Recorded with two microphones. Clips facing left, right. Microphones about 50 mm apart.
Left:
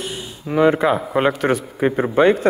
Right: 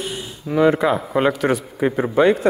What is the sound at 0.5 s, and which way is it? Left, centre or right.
Speech, left.